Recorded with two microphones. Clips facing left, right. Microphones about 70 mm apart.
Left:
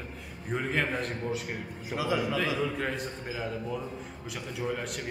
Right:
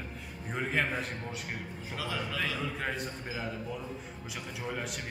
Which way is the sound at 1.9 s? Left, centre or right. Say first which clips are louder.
Left 8 dB; centre.